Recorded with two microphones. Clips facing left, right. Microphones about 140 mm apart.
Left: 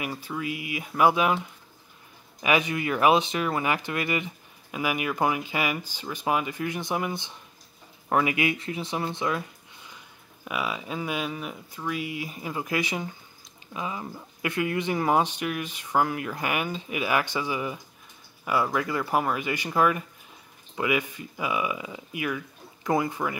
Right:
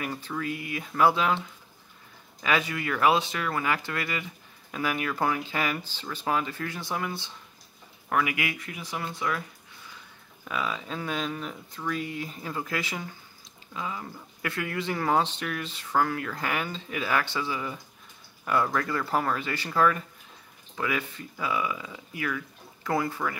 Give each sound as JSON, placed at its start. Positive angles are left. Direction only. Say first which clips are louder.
{"t": 0.0, "sound": "speech", "louder": "left 1 dB", "side_deg": 10}
{"t": 2.4, "sound": "speech", "louder": "left 3 dB", "side_deg": 20}
{"t": 10.4, "sound": "speech", "louder": "left 1 dB", "side_deg": 10}